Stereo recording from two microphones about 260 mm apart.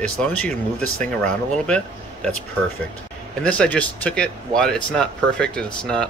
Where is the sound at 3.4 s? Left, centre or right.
Centre.